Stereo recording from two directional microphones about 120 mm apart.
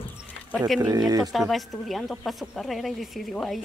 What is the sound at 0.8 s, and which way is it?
Speech, 30° right (ahead or behind).